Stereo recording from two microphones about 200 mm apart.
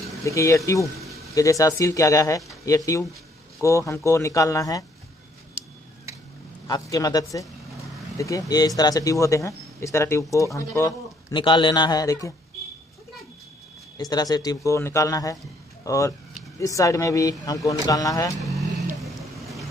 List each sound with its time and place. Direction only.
0.2 s speech: 15° left (ahead or behind)
6.7 s speech: 20° left (ahead or behind)
13.9 s speech: 20° left (ahead or behind)
18.4 s vehicle: centre (ahead or behind)